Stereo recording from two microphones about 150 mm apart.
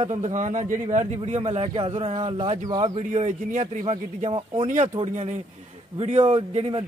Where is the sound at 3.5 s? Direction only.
55° right (ahead or behind).